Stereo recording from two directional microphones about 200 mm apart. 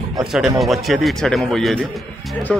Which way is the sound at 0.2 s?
Centre (ahead or behind).